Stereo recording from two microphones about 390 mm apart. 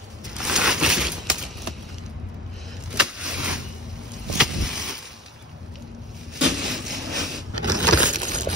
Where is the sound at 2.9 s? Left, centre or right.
Centre.